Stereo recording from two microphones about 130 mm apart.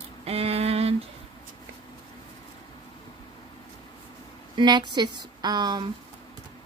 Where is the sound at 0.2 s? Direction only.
50° right (ahead or behind).